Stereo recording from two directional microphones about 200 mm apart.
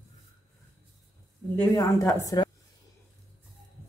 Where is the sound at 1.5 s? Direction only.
15° left (ahead or behind).